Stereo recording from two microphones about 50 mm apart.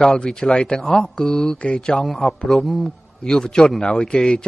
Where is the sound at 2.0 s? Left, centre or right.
Centre.